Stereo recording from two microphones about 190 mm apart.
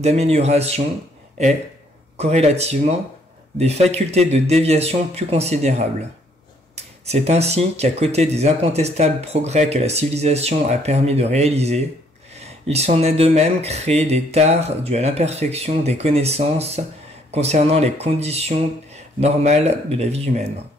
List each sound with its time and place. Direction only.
0.0 s speech: 35° right (ahead or behind)
2.1 s speech: 35° right (ahead or behind)